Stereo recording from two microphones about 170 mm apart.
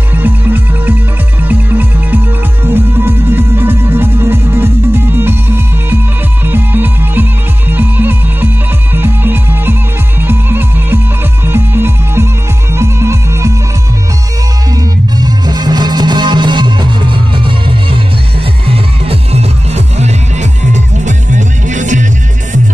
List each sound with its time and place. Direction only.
0.1 s music: 10° right (ahead or behind)
14.8 s music: 25° right (ahead or behind); by 22.0 s 45° right (ahead or behind)